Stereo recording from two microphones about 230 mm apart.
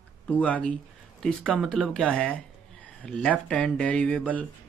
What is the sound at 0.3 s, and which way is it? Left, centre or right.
Speech, centre.